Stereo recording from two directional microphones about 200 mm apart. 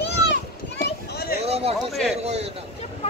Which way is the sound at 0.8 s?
50° left (ahead or behind).